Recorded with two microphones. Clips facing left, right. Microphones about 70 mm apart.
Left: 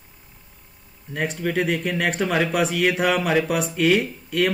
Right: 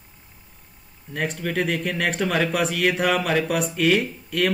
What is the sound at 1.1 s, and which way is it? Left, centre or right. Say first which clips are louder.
Speech: left 2 dB; centre.